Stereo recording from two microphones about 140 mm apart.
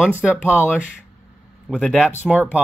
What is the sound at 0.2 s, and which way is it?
Speech, 5° left (ahead or behind).